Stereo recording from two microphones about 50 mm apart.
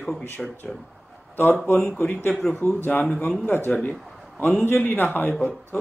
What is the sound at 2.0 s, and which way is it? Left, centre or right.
Speech, left.